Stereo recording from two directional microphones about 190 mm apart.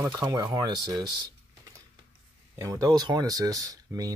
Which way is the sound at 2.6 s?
20° right (ahead or behind).